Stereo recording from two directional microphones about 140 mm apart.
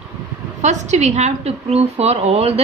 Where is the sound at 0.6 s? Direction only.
55° right (ahead or behind).